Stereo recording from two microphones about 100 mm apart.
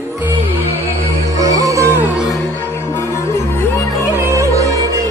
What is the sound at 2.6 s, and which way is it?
Music, 25° left (ahead or behind).